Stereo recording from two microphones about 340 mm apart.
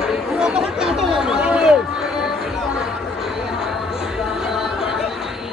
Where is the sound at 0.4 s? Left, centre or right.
Centre.